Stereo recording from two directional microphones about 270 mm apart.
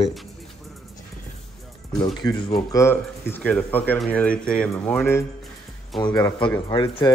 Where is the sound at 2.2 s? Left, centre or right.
Centre.